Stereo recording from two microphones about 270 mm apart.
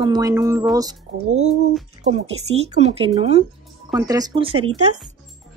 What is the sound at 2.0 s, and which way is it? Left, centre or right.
Speech, right.